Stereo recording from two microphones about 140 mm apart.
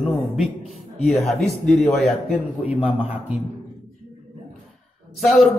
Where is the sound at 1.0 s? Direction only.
Centre (ahead or behind).